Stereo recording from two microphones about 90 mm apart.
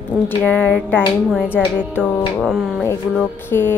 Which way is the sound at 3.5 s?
25° left (ahead or behind).